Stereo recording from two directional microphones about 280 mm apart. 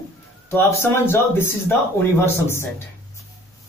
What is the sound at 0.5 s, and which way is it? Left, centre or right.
Speech, centre.